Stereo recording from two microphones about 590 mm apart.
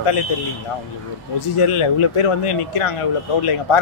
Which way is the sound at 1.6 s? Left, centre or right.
Left.